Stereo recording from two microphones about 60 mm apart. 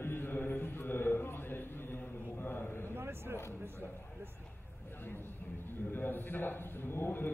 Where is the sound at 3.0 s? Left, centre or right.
Right.